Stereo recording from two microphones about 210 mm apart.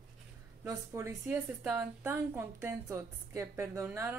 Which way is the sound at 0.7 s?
10° right (ahead or behind).